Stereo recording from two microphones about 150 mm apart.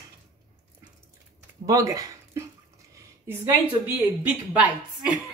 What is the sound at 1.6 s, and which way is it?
A woman's voice, 20° right (ahead or behind).